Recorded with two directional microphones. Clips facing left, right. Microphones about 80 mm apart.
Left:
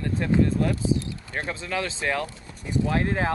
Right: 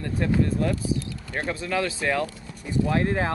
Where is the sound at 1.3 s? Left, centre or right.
Right.